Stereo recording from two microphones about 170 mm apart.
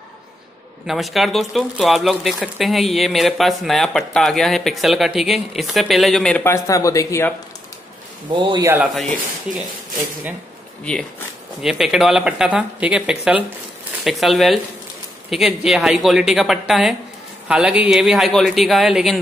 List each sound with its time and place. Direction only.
0.8 s speech: centre (ahead or behind); by 7.3 s 15° left (ahead or behind)
8.4 s a man's voice: 25° right (ahead or behind)
8.6 s speech: 5° right (ahead or behind)
10.8 s speech: 5° left (ahead or behind)